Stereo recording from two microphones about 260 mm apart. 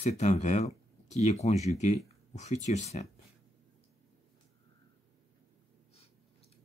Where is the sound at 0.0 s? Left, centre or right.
Left.